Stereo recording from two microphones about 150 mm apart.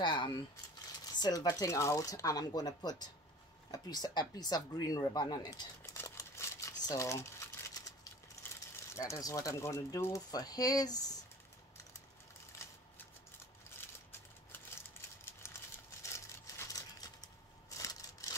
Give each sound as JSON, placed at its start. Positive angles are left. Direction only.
{"t": 0.0, "sound": "speech", "side_deg": 30}
{"t": 5.8, "sound": "crumpling", "side_deg": 20}
{"t": 8.5, "sound": "speech", "side_deg": 20}
{"t": 12.5, "sound": "shuffling cards", "side_deg": 20}
{"t": 15.2, "sound": "a sound", "side_deg": 20}